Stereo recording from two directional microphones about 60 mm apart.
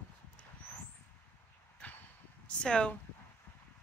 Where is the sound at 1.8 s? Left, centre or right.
Left.